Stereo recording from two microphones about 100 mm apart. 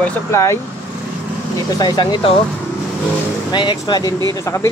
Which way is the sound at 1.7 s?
40° left (ahead or behind).